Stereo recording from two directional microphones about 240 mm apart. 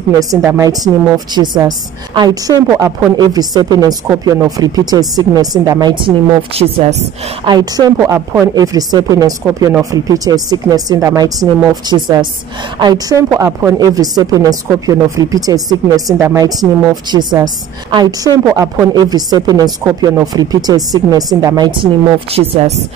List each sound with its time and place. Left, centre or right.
0.3 s a woman's voice: centre